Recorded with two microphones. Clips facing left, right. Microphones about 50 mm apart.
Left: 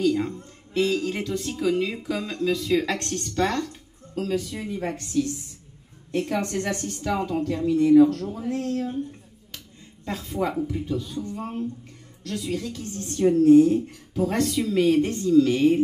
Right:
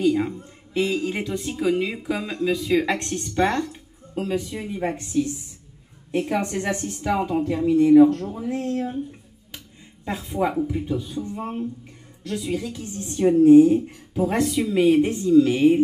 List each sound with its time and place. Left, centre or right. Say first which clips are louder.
0.0 s a woman's voice: right 2 dB; centre
10.0 s a woman's voice: right 3 dB; centre